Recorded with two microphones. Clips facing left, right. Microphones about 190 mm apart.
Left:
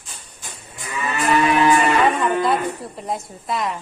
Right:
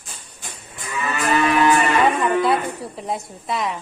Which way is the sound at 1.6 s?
Centre (ahead or behind).